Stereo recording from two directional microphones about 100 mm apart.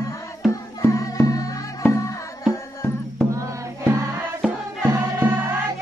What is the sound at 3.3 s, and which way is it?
Music, 30° right (ahead or behind).